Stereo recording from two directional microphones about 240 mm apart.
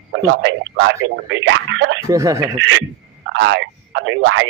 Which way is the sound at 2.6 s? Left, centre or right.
Right.